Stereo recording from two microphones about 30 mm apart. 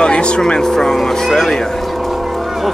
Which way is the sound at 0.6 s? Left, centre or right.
Centre.